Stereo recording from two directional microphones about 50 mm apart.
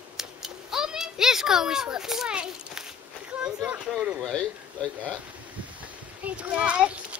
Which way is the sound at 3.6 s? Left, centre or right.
Right.